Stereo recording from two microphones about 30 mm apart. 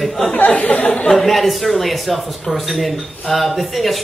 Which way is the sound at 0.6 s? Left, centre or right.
Left.